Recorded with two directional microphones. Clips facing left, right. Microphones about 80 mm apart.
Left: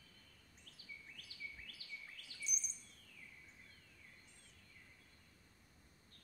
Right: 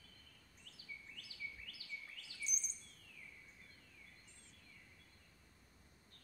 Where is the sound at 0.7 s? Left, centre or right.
Left.